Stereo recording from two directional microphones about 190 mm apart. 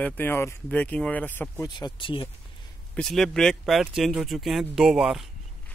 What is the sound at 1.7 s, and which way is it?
Speech, 25° left (ahead or behind).